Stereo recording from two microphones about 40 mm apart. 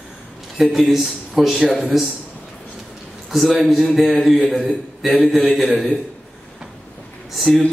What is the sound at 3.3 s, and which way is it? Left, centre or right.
A man's voice, centre.